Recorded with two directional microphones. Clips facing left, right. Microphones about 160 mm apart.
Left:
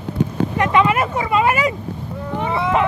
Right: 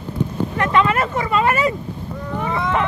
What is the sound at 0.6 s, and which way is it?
Speech, 15° left (ahead or behind).